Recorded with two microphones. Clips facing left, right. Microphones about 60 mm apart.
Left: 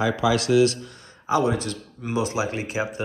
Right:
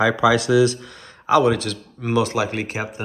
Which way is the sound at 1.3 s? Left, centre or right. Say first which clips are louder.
Right 5 dB; right.